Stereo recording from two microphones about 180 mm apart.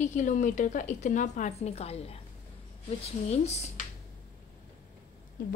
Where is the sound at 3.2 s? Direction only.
35° left (ahead or behind).